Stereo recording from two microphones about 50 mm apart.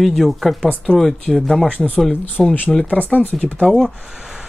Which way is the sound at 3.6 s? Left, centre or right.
Centre.